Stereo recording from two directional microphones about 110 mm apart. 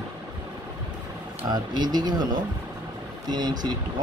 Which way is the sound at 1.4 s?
40° right (ahead or behind).